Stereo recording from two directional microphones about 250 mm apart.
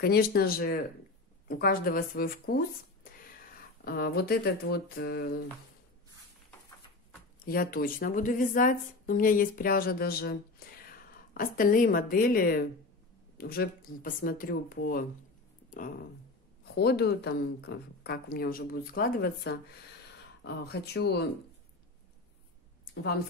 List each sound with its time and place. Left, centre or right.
0.0 s a woman's voice: left
7.3 s a woman's voice: left